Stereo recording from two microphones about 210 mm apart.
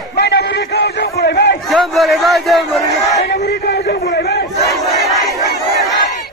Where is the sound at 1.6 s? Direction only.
Centre (ahead or behind).